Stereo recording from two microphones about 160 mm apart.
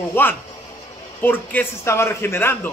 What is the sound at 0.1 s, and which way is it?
A man's voice, 10° left (ahead or behind).